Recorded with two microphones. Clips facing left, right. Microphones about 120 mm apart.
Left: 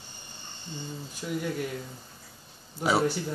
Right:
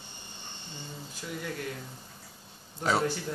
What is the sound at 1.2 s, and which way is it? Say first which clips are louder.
Speech: left 7 dB; 15° left (ahead or behind).